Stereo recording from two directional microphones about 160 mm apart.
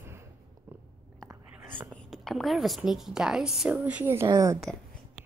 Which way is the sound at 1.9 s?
Centre (ahead or behind).